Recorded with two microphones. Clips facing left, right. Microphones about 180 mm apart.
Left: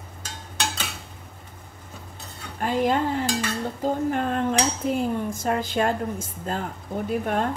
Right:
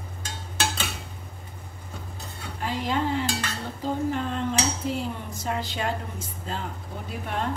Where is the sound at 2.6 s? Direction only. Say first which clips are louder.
Left 5 dB; 50° left (ahead or behind).